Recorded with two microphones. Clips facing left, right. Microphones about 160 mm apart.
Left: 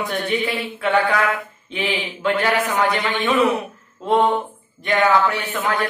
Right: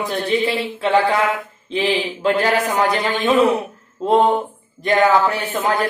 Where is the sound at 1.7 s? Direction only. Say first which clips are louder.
Right 5 dB; 35° right (ahead or behind).